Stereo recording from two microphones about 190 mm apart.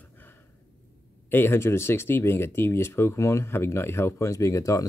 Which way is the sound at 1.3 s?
10° left (ahead or behind).